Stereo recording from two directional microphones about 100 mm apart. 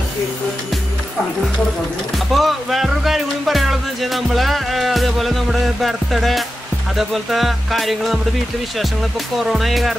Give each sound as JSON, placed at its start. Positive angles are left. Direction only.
{"t": 2.3, "sound": "music", "side_deg": 0}
{"t": 7.0, "sound": "speech", "side_deg": 0}
{"t": 9.4, "sound": "speech", "side_deg": 0}